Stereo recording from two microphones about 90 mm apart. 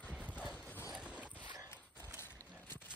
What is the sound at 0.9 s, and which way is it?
Boat, 10° right (ahead or behind).